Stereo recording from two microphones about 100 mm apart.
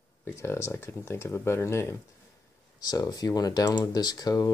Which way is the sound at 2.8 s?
35° left (ahead or behind).